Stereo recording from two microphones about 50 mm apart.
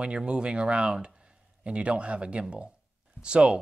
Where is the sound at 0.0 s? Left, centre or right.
Right.